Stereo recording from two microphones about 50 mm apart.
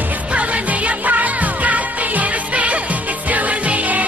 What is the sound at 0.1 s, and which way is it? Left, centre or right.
Music, right.